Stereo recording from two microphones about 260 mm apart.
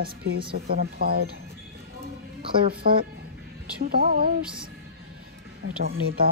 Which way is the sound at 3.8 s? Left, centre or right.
Right.